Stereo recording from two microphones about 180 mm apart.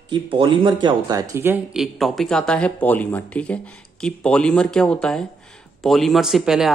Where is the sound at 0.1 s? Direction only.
25° right (ahead or behind).